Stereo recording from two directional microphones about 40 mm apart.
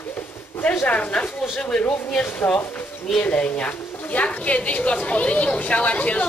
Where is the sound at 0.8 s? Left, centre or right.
Left.